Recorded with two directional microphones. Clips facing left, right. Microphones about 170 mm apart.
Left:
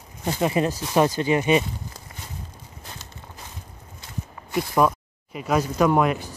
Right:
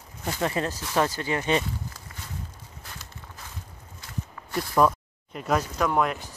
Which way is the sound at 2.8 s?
20° left (ahead or behind).